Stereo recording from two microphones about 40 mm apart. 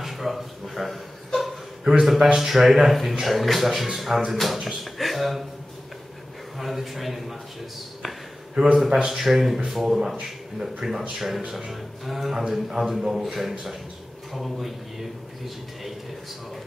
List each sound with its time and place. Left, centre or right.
0.0 s chuckle: centre
1.9 s a man's voice: centre
6.6 s speech: centre
8.6 s a man's voice: right
8.9 s a man's voice: centre